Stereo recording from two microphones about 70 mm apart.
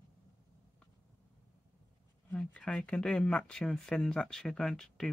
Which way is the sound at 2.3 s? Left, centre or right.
Centre.